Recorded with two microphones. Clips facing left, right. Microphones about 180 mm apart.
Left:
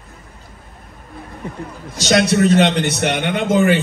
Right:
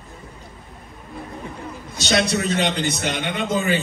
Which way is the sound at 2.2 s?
65° left (ahead or behind).